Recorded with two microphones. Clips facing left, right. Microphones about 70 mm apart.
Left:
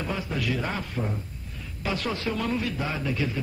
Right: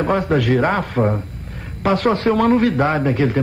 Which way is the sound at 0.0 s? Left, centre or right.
Right.